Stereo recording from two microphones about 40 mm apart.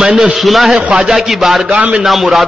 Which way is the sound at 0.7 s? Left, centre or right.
Centre.